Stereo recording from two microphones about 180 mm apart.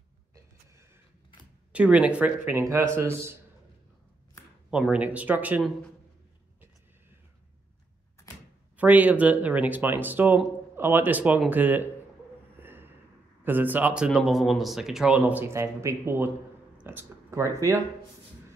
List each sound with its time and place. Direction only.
1.7 s speech: 5° right (ahead or behind)
4.6 s speech: 5° right (ahead or behind)
8.7 s speech: 10° right (ahead or behind)
12.5 s a sound: 10° right (ahead or behind)
13.4 s speech: 10° right (ahead or behind)